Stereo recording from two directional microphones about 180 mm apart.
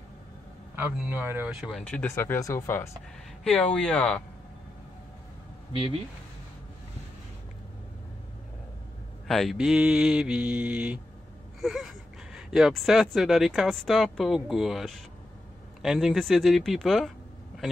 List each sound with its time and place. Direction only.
0.7 s speech: 10° right (ahead or behind)
5.7 s speech: 30° right (ahead or behind)
9.3 s speech: centre (ahead or behind)